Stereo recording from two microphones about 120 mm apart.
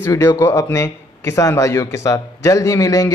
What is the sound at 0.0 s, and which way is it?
Speech, 20° left (ahead or behind).